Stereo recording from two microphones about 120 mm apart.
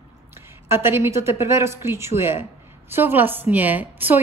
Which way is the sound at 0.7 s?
20° right (ahead or behind).